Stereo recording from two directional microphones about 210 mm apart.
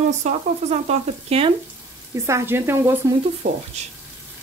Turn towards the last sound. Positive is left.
turn(degrees=-35)  # may be behind; listen again after turning